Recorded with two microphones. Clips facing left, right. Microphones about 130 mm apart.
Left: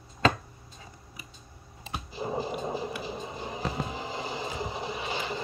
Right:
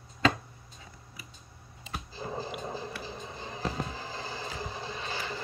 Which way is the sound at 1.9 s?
15° left (ahead or behind).